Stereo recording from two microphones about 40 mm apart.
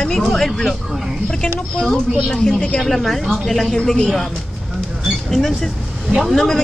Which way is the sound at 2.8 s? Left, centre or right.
Centre.